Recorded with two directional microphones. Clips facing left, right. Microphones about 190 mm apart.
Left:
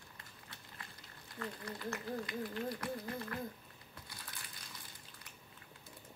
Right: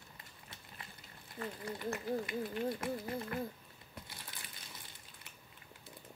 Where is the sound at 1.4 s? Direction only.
20° right (ahead or behind).